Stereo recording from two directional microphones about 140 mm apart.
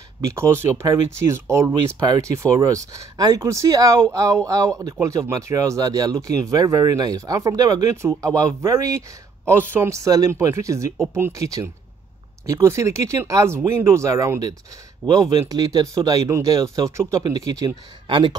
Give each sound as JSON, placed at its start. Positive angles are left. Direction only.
{"t": 0.2, "sound": "speech", "side_deg": -20}